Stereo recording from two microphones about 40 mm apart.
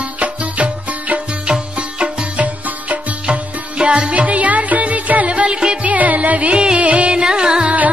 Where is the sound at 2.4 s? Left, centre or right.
Right.